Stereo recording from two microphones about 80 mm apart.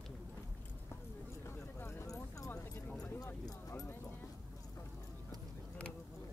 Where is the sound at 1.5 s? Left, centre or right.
Left.